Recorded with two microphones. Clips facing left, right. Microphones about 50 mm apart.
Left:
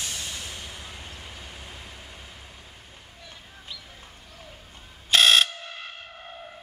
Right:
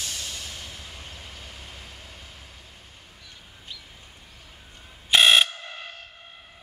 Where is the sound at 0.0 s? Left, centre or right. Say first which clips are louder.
Left 1 dB; centre.